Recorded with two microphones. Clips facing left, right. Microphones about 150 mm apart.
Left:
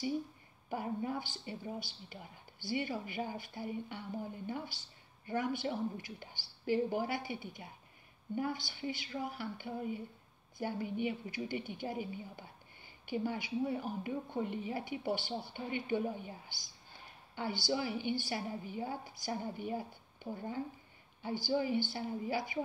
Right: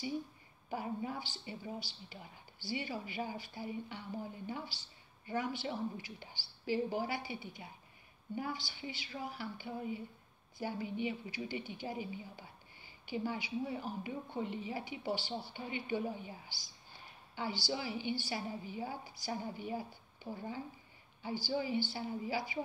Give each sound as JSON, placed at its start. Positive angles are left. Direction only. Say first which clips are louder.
{"t": 0.7, "sound": "a woman's voice", "louder": "left 2 dB", "side_deg": 55}
{"t": 20.2, "sound": "a sound", "louder": "left 2 dB", "side_deg": 50}
{"t": 21.2, "sound": "a woman's voice", "louder": "left 3 dB", "side_deg": 55}